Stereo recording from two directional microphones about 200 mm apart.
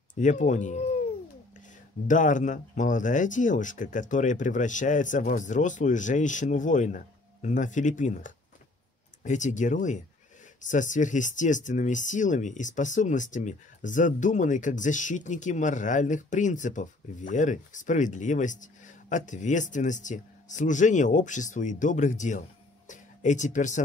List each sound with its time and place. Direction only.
0.1 s speech: 40° left (ahead or behind)
2.0 s speech: 40° left (ahead or behind)